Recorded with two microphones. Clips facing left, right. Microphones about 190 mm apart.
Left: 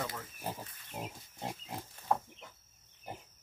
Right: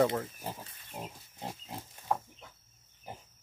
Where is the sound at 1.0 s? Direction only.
5° left (ahead or behind).